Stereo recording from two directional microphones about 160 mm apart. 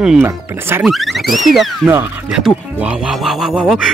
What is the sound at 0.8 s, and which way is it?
Speech, centre (ahead or behind).